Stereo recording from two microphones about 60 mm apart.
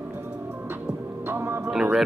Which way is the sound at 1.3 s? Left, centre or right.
Right.